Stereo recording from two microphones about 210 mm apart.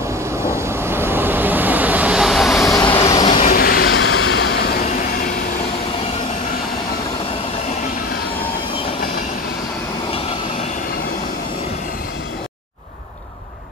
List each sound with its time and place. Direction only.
0.6 s vehicle: 10° right (ahead or behind)
2.5 s vehicle: 15° left (ahead or behind)
3.3 s vehicle: 40° left (ahead or behind)
3.9 s train: 70° left (ahead or behind); by 5.3 s 40° left (ahead or behind)